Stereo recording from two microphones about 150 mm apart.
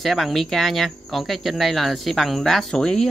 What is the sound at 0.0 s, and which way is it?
Speech, centre (ahead or behind).